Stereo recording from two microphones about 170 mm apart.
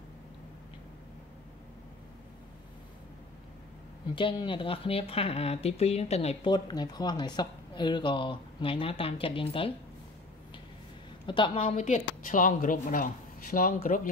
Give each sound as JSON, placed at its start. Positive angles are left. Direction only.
{"t": 4.1, "sound": "speech", "side_deg": 30}
{"t": 6.5, "sound": "speech", "side_deg": 25}
{"t": 11.2, "sound": "speech", "side_deg": 30}
{"t": 11.8, "sound": "speech", "side_deg": 50}